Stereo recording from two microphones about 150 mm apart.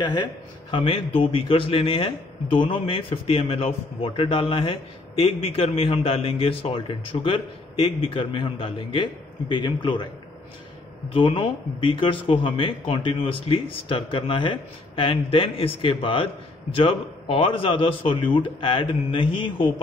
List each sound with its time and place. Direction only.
0.0 s a man's voice: 30° left (ahead or behind)
11.1 s a man's voice: 35° left (ahead or behind)